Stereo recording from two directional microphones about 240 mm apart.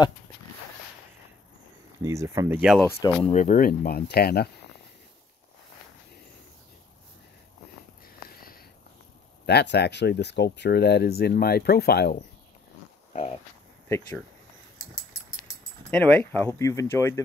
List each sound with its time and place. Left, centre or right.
2.0 s speech: centre
3.0 s speech: left
3.3 s speech: left
8.3 s sniff: left
9.5 s speech: left
13.8 s speech: centre
15.9 s speech: centre